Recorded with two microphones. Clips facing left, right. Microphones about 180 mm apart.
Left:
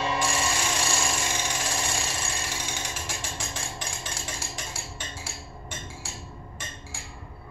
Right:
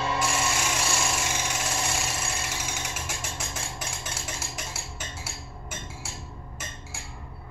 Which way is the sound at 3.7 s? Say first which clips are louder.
Even; 5° right (ahead or behind).